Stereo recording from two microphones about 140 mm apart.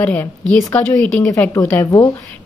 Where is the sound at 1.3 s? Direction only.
20° left (ahead or behind).